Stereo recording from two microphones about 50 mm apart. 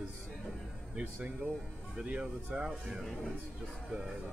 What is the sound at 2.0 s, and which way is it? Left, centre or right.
Speech, right.